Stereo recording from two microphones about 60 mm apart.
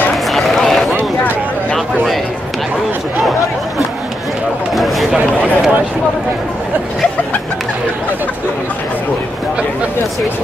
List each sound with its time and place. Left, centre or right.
0.3 s run: centre
4.7 s a sound: centre
5.4 s run: centre